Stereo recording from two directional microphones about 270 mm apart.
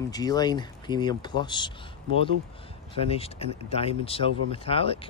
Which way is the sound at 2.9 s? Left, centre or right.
Left.